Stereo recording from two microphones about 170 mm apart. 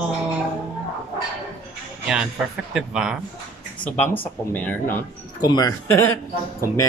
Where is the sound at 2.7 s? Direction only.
5° right (ahead or behind).